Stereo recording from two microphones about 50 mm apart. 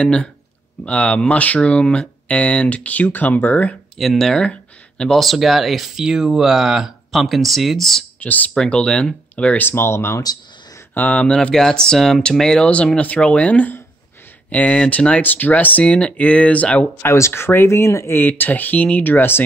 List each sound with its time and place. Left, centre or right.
0.0 s speech: left
4.0 s speech: centre
4.5 s a sound: centre
5.1 s speech: centre
8.2 s speech: left
8.6 s speech: left
9.6 s speech: left
11.0 s speech: left
11.5 s speech: centre; by 15.8 s left
15.8 s speech: left
17.3 s speech: left
18.1 s speech: left